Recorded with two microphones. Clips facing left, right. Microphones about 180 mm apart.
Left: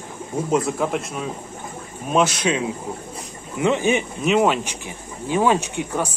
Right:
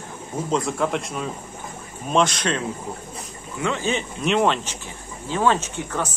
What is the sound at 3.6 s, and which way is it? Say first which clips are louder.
Speech: left 5 dB; 15° left (ahead or behind).